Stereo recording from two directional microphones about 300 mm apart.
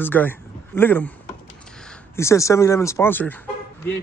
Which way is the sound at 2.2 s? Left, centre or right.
Centre.